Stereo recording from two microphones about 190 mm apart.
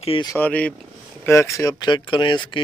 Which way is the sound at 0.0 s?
30° left (ahead or behind).